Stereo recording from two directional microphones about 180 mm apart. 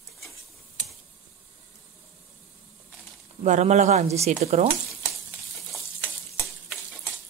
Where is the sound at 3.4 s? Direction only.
40° right (ahead or behind).